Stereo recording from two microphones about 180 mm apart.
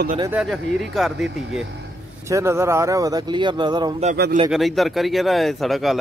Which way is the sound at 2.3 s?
15° right (ahead or behind).